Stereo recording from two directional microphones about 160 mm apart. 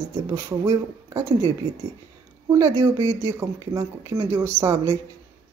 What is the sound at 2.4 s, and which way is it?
Speech, 20° right (ahead or behind).